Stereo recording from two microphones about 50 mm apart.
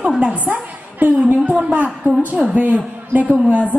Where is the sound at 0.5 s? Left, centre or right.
Right.